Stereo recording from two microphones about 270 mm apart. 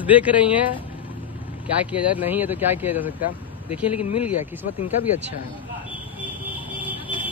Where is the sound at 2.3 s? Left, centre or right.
Centre.